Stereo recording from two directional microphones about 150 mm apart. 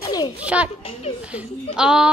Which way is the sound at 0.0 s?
25° left (ahead or behind).